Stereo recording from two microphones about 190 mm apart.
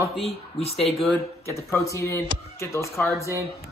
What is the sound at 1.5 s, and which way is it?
Speech, 15° left (ahead or behind).